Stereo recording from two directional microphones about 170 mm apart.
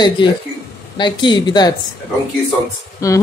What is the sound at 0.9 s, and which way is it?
Snicker, 25° left (ahead or behind).